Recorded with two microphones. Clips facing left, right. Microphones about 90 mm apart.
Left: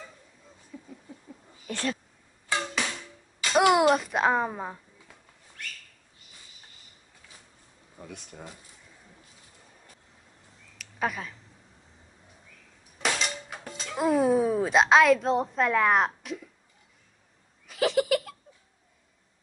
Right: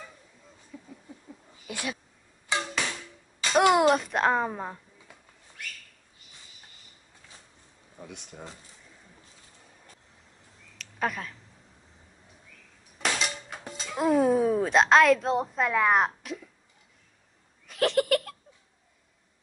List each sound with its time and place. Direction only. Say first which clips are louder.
0.7 s a sound: left 1 dB; 5° right (ahead or behind)
1.7 s speech: left 4 dB; 10° right (ahead or behind)
2.5 s music: even; 20° right (ahead or behind)
3.5 s a child's voice: even; centre (ahead or behind)
5.6 s bird: even; 5° right (ahead or behind)
8.1 s speech: left 1 dB; 20° right (ahead or behind)
10.8 s a sound: even; centre (ahead or behind)
13.0 s music: even; centre (ahead or behind)
13.7 s speech: right 1 dB; 5° right (ahead or behind)
17.6 s giggle: even; centre (ahead or behind)